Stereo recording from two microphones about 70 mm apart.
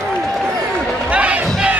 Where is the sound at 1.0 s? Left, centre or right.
Centre.